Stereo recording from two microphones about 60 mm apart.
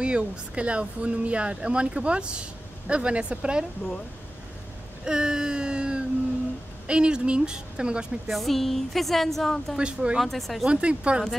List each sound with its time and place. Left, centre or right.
0.0 s speech: centre
5.0 s a sound: centre
6.9 s speech: centre
8.3 s speech: centre
9.8 s speech: centre
10.1 s speech: centre
10.7 s speech: centre